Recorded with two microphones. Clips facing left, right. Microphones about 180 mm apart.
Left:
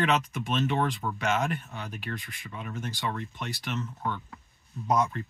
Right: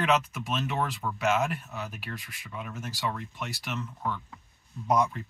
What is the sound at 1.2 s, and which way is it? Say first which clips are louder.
Speech: right 2 dB; 5° right (ahead or behind).